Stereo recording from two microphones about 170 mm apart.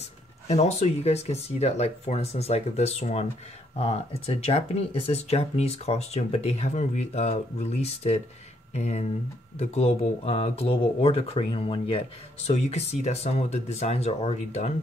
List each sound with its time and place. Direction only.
0.5 s speech: 40° left (ahead or behind)